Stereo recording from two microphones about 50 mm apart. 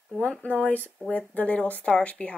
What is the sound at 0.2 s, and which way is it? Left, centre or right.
Speech, left.